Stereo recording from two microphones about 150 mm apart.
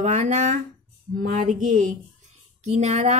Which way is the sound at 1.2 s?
65° right (ahead or behind).